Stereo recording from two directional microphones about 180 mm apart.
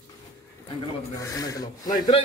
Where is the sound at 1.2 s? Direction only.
20° left (ahead or behind).